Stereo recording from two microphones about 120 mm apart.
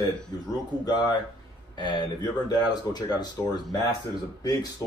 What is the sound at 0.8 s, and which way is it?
Speech, 35° left (ahead or behind).